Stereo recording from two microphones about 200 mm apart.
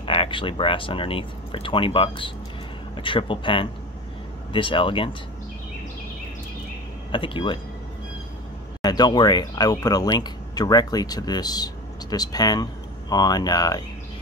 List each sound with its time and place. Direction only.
0.0 s speech: 25° left (ahead or behind)
7.1 s speech: 25° left (ahead or behind)
8.8 s speech: 20° left (ahead or behind)